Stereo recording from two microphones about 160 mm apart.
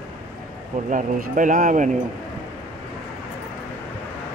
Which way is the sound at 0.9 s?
55° right (ahead or behind).